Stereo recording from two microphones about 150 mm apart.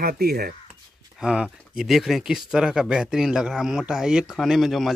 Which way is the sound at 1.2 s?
5° right (ahead or behind).